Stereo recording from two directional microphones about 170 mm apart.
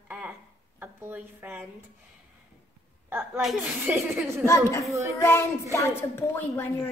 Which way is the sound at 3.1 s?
5° right (ahead or behind).